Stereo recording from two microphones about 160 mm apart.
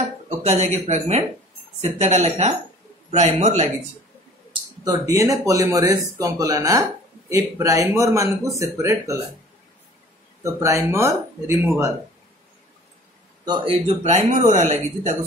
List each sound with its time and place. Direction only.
0.4 s speech: 45° right (ahead or behind)
4.5 s speech: 20° right (ahead or behind)
10.4 s speech: 20° right (ahead or behind)
13.5 s speech: 40° right (ahead or behind)